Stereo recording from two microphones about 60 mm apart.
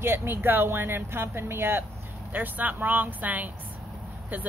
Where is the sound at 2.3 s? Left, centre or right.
Right.